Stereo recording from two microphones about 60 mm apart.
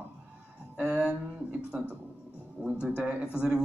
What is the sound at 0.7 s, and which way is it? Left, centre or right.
Speech, centre.